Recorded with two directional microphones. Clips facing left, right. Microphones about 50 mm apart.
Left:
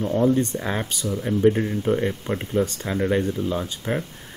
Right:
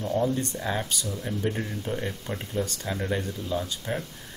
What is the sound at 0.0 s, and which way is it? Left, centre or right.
Speech, left.